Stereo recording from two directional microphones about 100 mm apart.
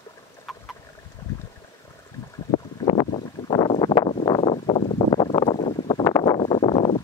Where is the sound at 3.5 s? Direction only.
55° left (ahead or behind).